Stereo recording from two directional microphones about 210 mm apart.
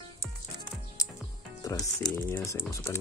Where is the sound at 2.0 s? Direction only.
10° left (ahead or behind).